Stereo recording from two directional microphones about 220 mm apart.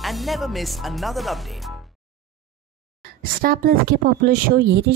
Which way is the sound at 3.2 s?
40° right (ahead or behind).